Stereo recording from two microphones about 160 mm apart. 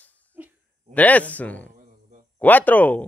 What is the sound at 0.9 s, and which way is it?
Speech, 10° left (ahead or behind).